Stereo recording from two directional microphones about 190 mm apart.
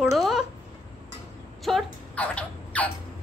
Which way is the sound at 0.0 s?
Centre (ahead or behind).